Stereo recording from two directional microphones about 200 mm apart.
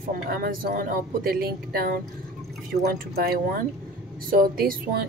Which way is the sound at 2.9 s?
50° right (ahead or behind).